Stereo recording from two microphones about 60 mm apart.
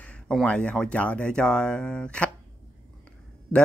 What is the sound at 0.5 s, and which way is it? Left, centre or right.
A man's voice, centre.